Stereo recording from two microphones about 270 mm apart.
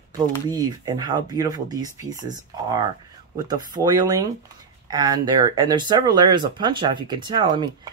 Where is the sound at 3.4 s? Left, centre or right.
Centre.